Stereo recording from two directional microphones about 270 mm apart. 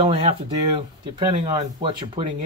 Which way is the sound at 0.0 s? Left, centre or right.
Right.